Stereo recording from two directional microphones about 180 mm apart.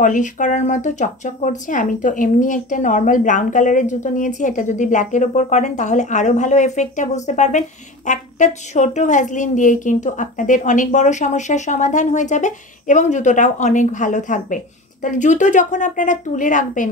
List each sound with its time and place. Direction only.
0.0 s speech: 45° left (ahead or behind)